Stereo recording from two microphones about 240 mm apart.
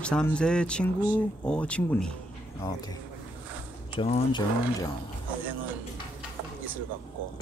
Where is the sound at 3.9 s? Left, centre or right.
Left.